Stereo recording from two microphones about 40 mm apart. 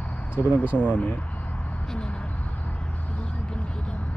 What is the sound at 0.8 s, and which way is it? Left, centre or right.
Speech, left.